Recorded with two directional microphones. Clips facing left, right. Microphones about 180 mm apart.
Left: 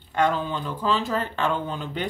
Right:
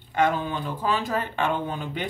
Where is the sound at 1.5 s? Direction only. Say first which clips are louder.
Even; 50° right (ahead or behind).